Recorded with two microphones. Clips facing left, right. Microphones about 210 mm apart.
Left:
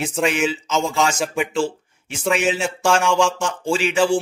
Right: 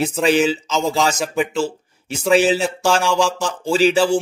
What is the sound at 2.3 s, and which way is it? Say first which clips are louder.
Speech: right 6 dB; 35° right (ahead or behind).